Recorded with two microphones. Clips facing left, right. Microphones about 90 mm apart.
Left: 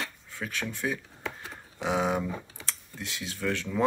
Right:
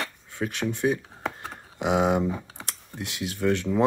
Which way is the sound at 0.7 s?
20° right (ahead or behind).